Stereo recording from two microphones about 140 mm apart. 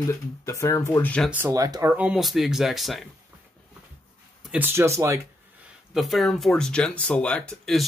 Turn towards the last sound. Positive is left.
turn(degrees=5)  # may be behind; listen again after turning